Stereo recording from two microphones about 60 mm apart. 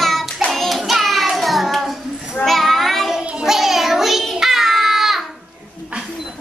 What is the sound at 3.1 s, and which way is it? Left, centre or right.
Child singing, centre.